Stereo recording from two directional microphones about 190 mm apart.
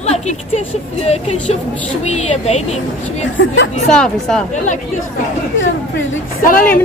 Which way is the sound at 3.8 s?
5° left (ahead or behind).